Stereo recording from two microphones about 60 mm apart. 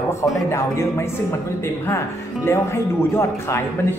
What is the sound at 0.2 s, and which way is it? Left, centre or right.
Speech, left.